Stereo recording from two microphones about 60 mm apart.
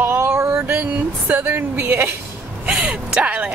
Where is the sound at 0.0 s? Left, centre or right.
Right.